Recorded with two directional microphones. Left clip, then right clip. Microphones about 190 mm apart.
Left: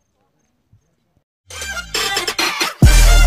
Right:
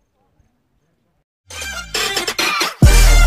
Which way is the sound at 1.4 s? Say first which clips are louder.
Left 1 dB; centre (ahead or behind).